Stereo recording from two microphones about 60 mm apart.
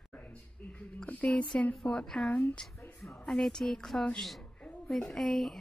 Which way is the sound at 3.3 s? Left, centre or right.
Centre.